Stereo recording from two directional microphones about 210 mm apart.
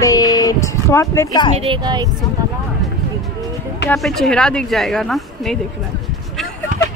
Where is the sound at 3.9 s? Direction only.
Centre (ahead or behind).